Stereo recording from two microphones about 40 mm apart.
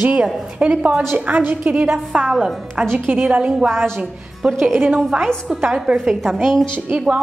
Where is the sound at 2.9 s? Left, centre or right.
Right.